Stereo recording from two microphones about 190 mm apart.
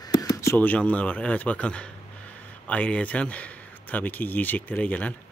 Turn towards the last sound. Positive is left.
turn(degrees=5)  # may be behind; listen again after turning